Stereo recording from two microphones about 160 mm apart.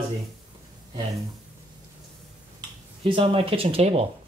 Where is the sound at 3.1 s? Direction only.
35° right (ahead or behind).